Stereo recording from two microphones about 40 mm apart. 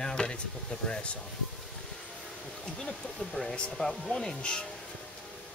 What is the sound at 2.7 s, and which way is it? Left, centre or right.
Speech, centre.